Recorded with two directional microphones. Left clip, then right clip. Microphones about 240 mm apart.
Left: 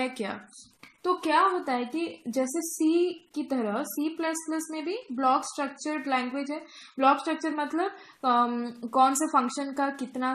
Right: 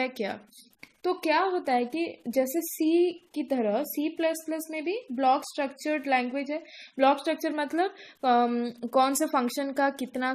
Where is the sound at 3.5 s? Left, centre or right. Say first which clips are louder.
Right 3 dB; right.